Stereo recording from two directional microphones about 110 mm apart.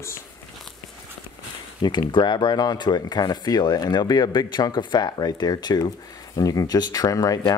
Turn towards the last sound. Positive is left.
turn(degrees=35)  # may be behind; listen again after turning